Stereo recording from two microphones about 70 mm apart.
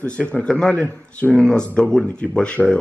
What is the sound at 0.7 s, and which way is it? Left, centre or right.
Speech, left.